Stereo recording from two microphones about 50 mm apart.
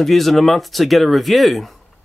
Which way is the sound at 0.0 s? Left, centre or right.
Centre.